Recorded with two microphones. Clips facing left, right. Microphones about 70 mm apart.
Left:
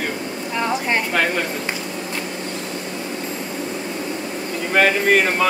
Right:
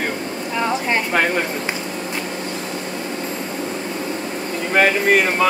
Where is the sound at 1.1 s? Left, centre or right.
Centre.